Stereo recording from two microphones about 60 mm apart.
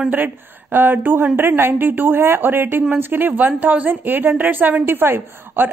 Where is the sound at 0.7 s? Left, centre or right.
Right.